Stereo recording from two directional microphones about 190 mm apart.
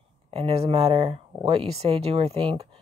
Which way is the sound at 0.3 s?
30° right (ahead or behind).